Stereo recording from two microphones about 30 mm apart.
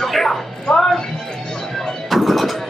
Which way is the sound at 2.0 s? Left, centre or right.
Centre.